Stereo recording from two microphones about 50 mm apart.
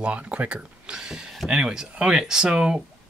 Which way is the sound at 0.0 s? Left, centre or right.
Right.